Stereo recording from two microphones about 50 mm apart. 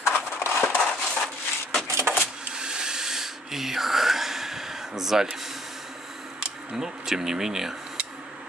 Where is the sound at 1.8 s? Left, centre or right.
Right.